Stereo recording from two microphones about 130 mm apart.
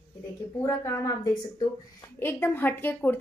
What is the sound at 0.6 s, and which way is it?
A woman's voice, 25° left (ahead or behind).